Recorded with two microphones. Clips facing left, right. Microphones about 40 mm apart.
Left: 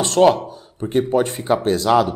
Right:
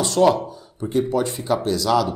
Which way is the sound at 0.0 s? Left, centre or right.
Left.